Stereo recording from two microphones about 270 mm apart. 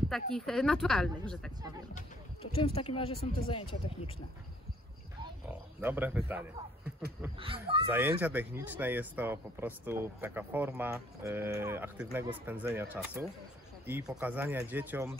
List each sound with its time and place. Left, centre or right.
0.1 s speech: centre
2.5 s speech: left
5.8 s speech: centre
7.3 s speech: centre
7.9 s speech: centre